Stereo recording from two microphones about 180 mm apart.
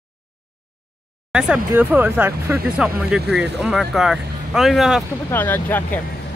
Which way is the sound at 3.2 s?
70° right (ahead or behind).